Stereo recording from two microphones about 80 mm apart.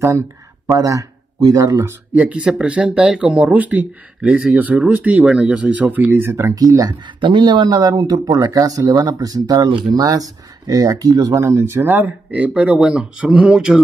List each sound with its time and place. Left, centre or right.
0.7 s speech: right
2.1 s speech: centre; by 6.5 s right
6.5 s speech: right
7.2 s speech: right
9.7 s speech: right
9.9 s speech: right
11.3 s speech: right; by 13.7 s centre